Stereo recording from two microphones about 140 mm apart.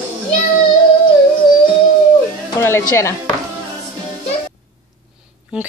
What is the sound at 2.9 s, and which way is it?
Speech, 20° left (ahead or behind).